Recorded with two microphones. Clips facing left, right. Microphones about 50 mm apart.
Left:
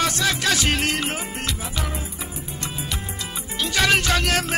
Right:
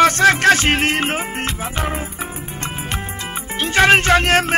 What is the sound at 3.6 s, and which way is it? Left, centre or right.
Music, right.